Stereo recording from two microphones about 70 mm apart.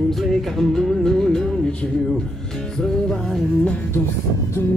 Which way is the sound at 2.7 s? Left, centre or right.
Centre.